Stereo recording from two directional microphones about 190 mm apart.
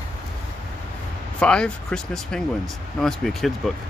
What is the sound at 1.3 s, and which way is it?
Speech, 5° left (ahead or behind).